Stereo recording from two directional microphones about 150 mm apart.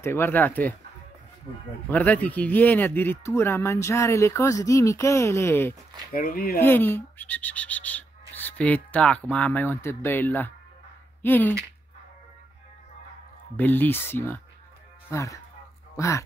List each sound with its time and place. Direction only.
0.0 s speech: 15° left (ahead or behind)
1.9 s speech: 10° left (ahead or behind)
6.1 s speech: 75° left (ahead or behind)
6.6 s speech: 15° left (ahead or behind)
13.6 s speech: 15° left (ahead or behind)